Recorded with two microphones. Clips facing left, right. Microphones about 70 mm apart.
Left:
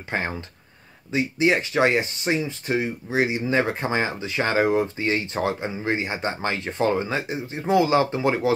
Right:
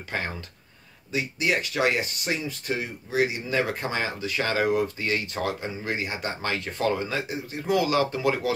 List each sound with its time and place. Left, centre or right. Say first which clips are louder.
0.1 s speech: left 4 dB; left